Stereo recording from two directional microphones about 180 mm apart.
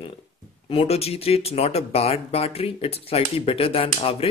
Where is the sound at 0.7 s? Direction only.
35° left (ahead or behind).